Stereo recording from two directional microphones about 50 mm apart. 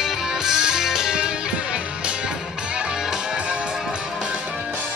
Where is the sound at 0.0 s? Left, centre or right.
Centre.